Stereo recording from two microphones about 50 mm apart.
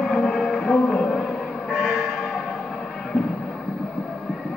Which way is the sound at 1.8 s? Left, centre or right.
Centre.